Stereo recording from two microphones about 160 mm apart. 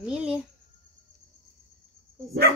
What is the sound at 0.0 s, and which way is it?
Speech, 5° right (ahead or behind).